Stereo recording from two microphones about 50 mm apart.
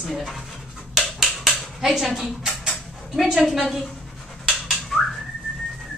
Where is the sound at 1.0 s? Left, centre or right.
Centre.